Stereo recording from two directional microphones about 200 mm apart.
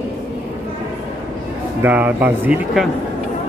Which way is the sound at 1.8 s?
10° right (ahead or behind).